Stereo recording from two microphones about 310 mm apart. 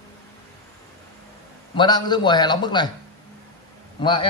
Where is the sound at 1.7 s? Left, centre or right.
Centre.